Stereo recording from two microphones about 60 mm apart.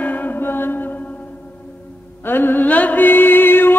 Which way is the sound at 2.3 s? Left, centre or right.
Left.